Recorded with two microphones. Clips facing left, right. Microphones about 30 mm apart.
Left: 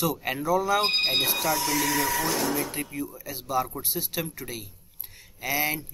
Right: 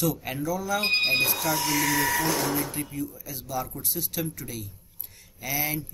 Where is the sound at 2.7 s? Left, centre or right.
Left.